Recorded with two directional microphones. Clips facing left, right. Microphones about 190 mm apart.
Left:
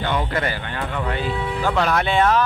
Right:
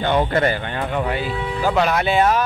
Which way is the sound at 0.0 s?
40° right (ahead or behind).